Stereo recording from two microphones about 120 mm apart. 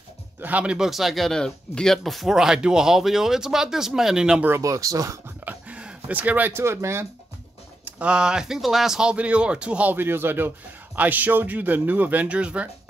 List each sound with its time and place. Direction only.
0.4 s speech: 10° right (ahead or behind)
4.5 s speech: 25° right (ahead or behind)
5.4 s speech: 10° right (ahead or behind)
7.8 s speech: 10° right (ahead or behind)